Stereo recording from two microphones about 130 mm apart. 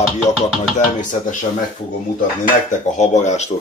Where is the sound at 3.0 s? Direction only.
65° left (ahead or behind).